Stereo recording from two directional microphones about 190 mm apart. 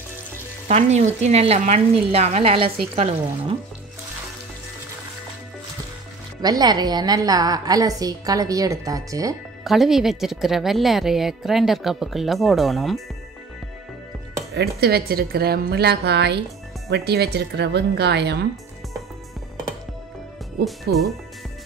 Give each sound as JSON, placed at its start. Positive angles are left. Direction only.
{"t": 0.7, "sound": "speech", "side_deg": -35}
{"t": 6.4, "sound": "a woman's voice", "side_deg": -20}
{"t": 9.7, "sound": "a woman's voice", "side_deg": 0}
{"t": 14.5, "sound": "a woman's voice", "side_deg": -55}